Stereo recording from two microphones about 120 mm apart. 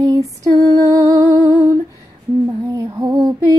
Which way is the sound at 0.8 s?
25° right (ahead or behind).